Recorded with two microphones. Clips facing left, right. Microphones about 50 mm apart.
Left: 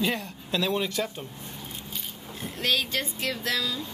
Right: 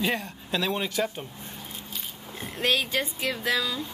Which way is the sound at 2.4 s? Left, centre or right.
Centre.